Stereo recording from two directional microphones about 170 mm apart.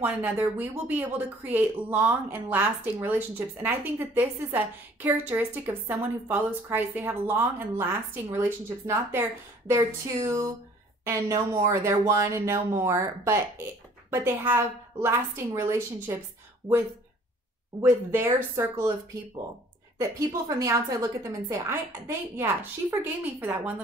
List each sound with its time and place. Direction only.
0.0 s speech: 10° right (ahead or behind)
10.2 s speech: 15° right (ahead or behind)
17.8 s speech: 15° right (ahead or behind)
20.0 s speech: 20° right (ahead or behind)